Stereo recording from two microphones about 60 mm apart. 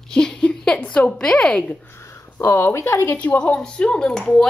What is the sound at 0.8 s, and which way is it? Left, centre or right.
Speech, left.